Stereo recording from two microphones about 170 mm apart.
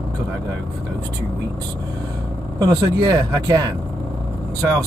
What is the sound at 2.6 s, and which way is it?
Speech, 20° right (ahead or behind).